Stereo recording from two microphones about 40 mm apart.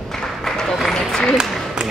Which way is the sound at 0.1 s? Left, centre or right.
Centre.